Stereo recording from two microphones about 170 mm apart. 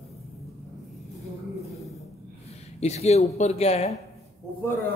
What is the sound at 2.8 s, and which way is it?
Speech, 40° left (ahead or behind).